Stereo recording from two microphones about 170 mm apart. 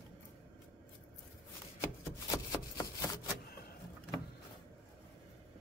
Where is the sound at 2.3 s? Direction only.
20° left (ahead or behind).